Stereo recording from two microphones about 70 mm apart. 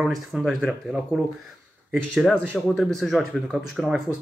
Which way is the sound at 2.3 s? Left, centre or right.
Centre.